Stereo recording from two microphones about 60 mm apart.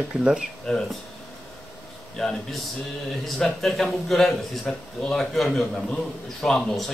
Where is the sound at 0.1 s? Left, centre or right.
Centre.